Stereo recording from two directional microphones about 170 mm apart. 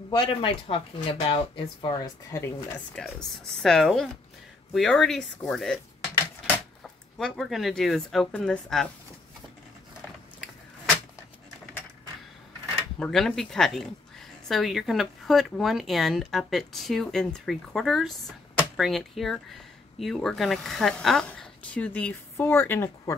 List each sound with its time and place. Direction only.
0.1 s speech: 25° left (ahead or behind)
3.0 s speech: 5° left (ahead or behind)
6.8 s speech: centre (ahead or behind)
13.0 s speech: centre (ahead or behind)